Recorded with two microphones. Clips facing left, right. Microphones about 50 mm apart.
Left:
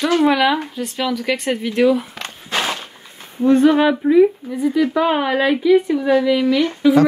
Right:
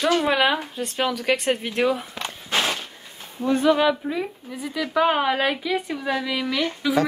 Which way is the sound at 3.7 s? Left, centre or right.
Centre.